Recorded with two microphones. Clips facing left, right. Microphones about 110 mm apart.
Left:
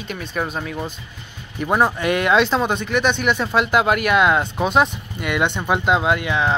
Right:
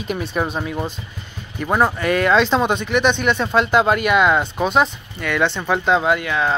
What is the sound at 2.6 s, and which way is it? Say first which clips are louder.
Speech: right 2 dB; centre (ahead or behind).